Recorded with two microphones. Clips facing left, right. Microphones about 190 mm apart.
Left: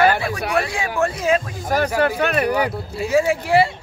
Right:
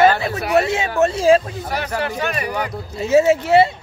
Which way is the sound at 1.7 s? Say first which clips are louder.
Left 8 dB; 50° left (ahead or behind).